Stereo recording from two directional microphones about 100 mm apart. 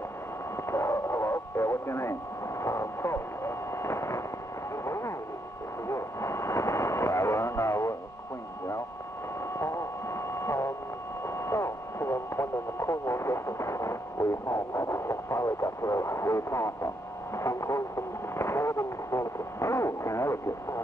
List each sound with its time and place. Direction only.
0.7 s radio: 30° left (ahead or behind)
2.6 s a sound: 30° left (ahead or behind)
9.5 s a sound: 30° left (ahead or behind)
11.2 s speech: 30° left (ahead or behind)
17.4 s radio: 30° left (ahead or behind)
18.3 s speech: 25° left (ahead or behind)